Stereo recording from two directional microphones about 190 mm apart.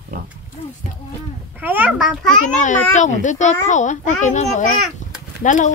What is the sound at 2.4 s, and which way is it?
Speech, 40° left (ahead or behind).